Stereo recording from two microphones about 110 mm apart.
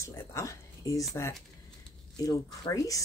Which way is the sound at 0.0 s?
25° left (ahead or behind).